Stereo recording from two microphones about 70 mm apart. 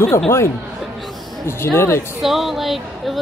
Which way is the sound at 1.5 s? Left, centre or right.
Left.